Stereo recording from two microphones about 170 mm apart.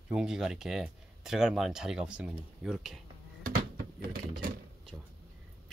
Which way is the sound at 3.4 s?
60° right (ahead or behind).